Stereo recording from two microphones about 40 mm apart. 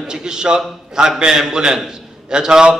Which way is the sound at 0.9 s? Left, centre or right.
Centre.